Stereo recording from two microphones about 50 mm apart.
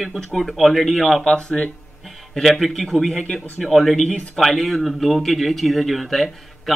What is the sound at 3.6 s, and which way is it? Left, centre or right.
Speech, centre.